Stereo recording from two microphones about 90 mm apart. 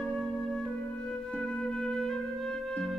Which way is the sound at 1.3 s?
5° left (ahead or behind).